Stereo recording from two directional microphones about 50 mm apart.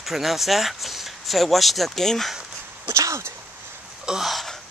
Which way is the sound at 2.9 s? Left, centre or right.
Right.